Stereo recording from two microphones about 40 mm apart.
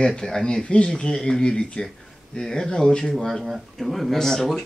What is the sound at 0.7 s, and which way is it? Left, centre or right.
Speech, left.